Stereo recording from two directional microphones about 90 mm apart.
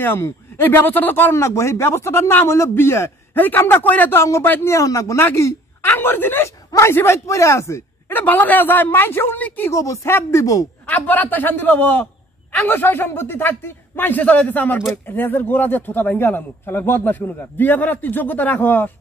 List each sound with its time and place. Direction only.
0.0 s a man's voice: 25° left (ahead or behind)
4.2 s speech: 30° left (ahead or behind)
8.2 s a man's voice: 20° left (ahead or behind); by 10.7 s 40° left (ahead or behind)
10.9 s a man's voice: 20° left (ahead or behind)